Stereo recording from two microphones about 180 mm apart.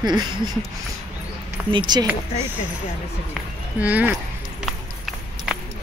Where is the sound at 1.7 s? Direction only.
25° right (ahead or behind).